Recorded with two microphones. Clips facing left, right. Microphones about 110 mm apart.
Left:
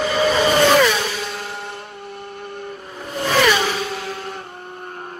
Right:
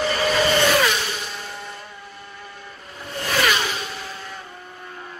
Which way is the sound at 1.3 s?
65° left (ahead or behind).